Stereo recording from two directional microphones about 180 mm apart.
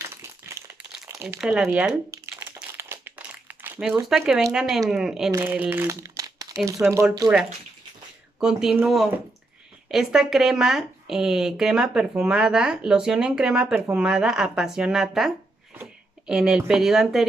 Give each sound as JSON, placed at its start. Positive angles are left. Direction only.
{"t": 0.0, "sound": "a sound", "side_deg": -15}
{"t": 1.4, "sound": "speech", "side_deg": -5}
{"t": 2.0, "sound": "crumpling", "side_deg": -15}
{"t": 4.1, "sound": "speech", "side_deg": 0}
{"t": 8.4, "sound": "speech", "side_deg": -5}